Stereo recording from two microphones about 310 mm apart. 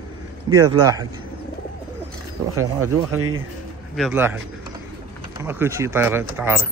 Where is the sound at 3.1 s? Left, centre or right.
Right.